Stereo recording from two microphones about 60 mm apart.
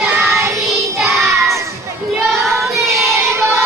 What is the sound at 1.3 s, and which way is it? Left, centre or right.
Child singing, right.